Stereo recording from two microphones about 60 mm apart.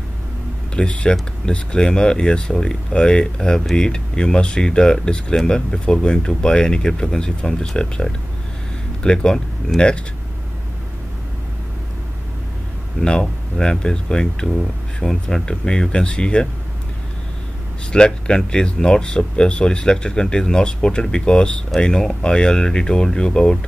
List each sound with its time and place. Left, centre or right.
0.7 s speech: centre
13.0 s speech: centre
17.9 s speech: centre